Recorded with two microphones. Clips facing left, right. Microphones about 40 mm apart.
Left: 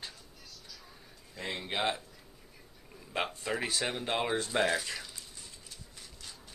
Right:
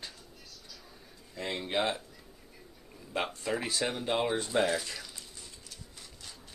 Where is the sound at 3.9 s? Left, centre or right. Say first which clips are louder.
Right 3 dB; left.